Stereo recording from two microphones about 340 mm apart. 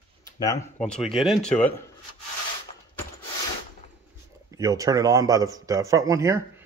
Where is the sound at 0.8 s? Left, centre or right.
Centre.